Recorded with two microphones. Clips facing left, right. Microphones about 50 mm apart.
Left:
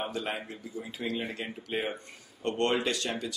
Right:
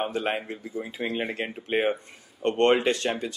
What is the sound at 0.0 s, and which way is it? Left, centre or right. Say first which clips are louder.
Speech: right 6 dB; right.